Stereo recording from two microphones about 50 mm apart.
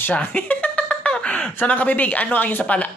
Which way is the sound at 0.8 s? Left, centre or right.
Centre.